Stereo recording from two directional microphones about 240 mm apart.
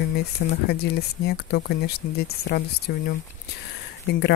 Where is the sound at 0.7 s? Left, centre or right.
Left.